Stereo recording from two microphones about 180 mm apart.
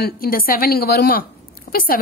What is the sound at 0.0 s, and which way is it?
A woman's voice, 55° left (ahead or behind).